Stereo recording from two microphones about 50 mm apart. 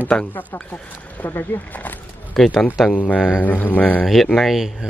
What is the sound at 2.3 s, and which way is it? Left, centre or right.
Speech, centre.